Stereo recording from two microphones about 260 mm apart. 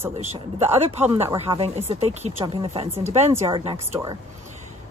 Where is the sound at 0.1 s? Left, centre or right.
Right.